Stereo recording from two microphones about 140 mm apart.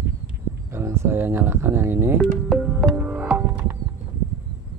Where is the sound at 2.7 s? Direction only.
10° right (ahead or behind).